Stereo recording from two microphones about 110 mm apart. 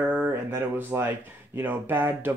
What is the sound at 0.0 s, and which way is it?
Speech, 15° right (ahead or behind).